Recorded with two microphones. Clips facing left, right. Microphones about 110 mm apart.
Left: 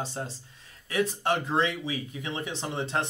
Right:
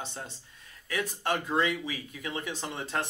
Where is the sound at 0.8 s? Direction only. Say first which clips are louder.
Left 4 dB; 25° left (ahead or behind).